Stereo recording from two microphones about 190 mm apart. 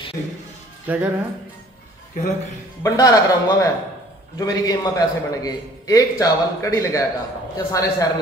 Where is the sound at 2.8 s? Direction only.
15° left (ahead or behind).